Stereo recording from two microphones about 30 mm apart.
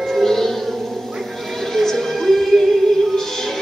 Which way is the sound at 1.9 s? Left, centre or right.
Centre.